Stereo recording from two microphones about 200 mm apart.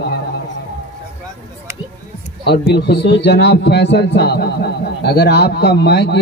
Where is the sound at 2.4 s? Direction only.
55° left (ahead or behind).